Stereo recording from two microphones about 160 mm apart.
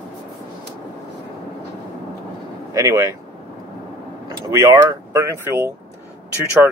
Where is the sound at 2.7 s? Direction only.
20° right (ahead or behind).